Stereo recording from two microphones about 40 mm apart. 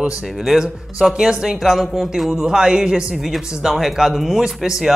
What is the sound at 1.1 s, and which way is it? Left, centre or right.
Speech, centre.